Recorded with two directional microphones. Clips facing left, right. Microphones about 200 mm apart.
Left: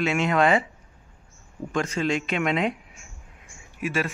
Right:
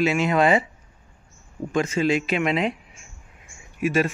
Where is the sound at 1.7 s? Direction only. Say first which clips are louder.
Right 4 dB; 5° right (ahead or behind).